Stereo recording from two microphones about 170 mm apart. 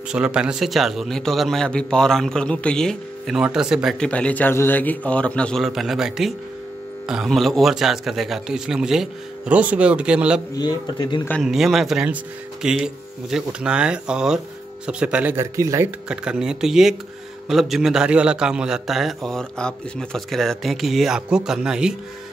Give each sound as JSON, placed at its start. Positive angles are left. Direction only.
{"t": 0.1, "sound": "a man's voice", "side_deg": -5}
{"t": 10.5, "sound": "speech", "side_deg": 25}
{"t": 11.4, "sound": "a man's voice", "side_deg": 0}
{"t": 16.1, "sound": "a man's voice", "side_deg": -5}